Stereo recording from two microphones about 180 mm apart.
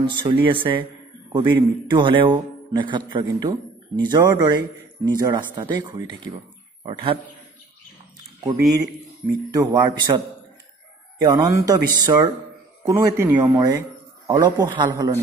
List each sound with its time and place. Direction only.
0.0 s a man's voice: 25° right (ahead or behind)
9.5 s a man's voice: 20° right (ahead or behind)